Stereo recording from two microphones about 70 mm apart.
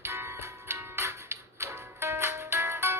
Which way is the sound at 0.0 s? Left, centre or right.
Right.